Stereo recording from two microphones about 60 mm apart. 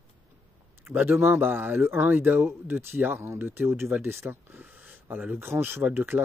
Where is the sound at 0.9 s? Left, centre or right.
Right.